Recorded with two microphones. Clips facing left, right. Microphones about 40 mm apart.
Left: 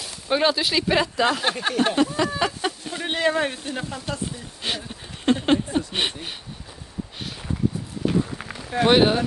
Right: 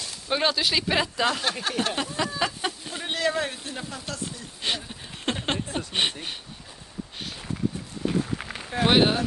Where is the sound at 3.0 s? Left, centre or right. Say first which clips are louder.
Left 4 dB; left.